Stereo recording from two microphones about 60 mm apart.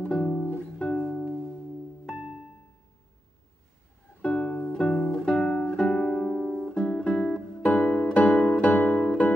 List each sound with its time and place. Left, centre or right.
0.0 s music: left
0.3 s music: left
0.7 s music: centre
4.2 s music: left
9.0 s music: centre